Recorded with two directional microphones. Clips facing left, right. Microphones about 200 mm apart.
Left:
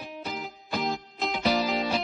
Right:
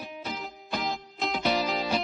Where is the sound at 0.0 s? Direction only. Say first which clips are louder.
Left 1 dB; centre (ahead or behind).